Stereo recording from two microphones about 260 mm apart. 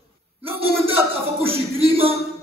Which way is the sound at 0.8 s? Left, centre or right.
Right.